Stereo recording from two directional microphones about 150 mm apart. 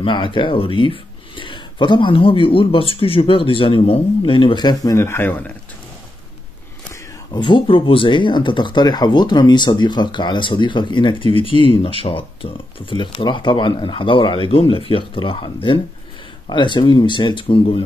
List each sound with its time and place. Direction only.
0.0 s speech: 35° left (ahead or behind); by 5.5 s 10° left (ahead or behind)
7.3 s speech: 35° left (ahead or behind)